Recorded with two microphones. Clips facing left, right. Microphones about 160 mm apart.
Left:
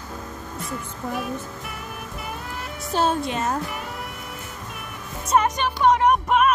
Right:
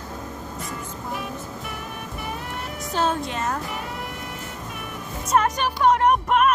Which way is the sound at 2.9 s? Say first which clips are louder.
Left 2 dB; 10° left (ahead or behind).